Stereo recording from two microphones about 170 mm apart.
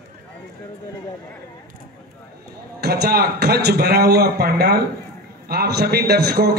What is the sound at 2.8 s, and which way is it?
A man's voice, 65° right (ahead or behind).